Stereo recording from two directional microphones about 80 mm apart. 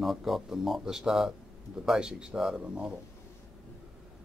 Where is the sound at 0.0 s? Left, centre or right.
Centre.